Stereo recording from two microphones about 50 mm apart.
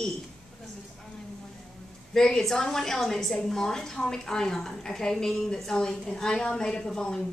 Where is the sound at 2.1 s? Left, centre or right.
Centre.